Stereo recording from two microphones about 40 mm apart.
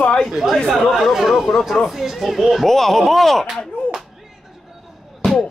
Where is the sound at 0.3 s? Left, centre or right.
Centre.